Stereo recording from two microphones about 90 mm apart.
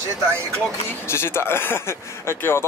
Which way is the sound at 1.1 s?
30° left (ahead or behind).